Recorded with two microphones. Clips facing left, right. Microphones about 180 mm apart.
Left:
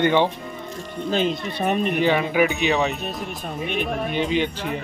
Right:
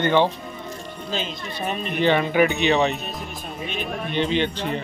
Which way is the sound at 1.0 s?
55° left (ahead or behind).